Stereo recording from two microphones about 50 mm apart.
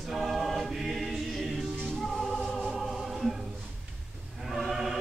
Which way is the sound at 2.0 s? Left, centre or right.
Centre.